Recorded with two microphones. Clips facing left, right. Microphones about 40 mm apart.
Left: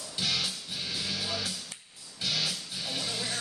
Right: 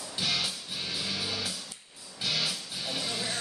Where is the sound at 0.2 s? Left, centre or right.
Centre.